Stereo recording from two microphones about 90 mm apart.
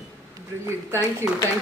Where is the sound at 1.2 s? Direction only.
30° right (ahead or behind).